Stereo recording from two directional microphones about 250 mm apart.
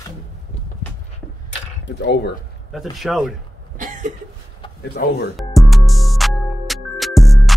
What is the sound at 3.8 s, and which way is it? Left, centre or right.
Cough, right.